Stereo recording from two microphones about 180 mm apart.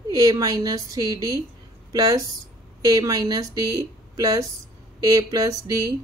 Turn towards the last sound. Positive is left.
turn(degrees=-20)  # may be behind; listen again after turning